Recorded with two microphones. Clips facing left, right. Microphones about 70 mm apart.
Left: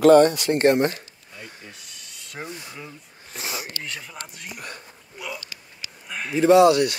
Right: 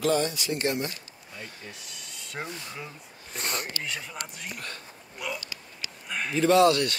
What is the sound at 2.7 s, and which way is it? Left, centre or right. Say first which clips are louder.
Speech: left 1 dB; centre.